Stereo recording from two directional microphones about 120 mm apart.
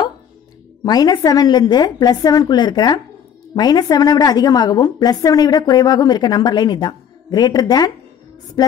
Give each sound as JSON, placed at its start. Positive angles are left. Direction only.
{"t": 0.8, "sound": "a woman's voice", "side_deg": 35}